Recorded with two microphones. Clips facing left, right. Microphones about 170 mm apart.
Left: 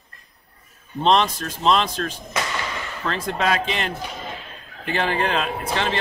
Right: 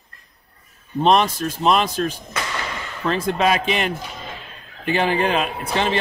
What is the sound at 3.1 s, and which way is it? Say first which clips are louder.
Speech: right 4 dB; 15° right (ahead or behind).